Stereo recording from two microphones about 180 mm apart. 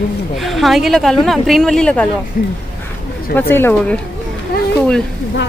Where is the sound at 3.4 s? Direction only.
10° left (ahead or behind).